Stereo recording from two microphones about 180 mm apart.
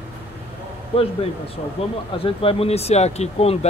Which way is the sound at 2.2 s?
30° left (ahead or behind).